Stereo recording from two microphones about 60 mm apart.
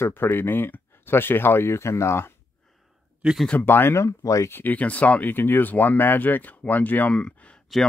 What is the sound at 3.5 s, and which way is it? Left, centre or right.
Speech, left.